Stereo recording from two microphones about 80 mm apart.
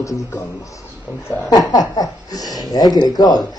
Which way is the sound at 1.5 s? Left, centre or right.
Left.